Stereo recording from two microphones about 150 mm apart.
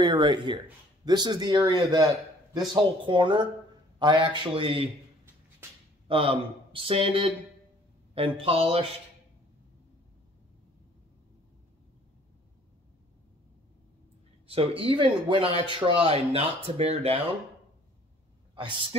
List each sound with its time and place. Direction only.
0.0 s a man's voice: 30° right (ahead or behind)
6.0 s a man's voice: 35° right (ahead or behind)
14.5 s a man's voice: 35° right (ahead or behind)
18.5 s a man's voice: 35° right (ahead or behind)